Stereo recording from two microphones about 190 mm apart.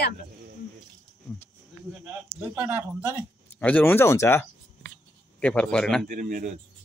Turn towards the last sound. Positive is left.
turn(degrees=-45)  # may be behind; listen again after turning